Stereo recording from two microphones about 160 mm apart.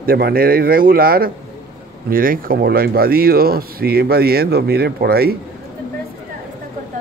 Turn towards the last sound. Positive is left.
turn(degrees=-80)